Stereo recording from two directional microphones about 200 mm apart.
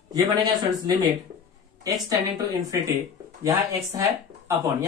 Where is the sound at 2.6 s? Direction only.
15° right (ahead or behind).